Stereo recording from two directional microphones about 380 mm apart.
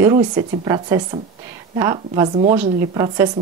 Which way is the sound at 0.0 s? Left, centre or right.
Centre.